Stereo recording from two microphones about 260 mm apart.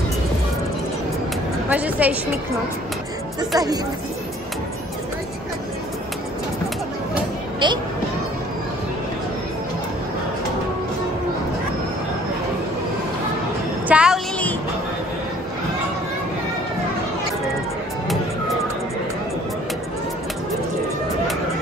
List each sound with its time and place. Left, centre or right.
1.7 s a woman's voice: centre
3.3 s speech: centre
7.6 s speech: centre
13.8 s a sound: centre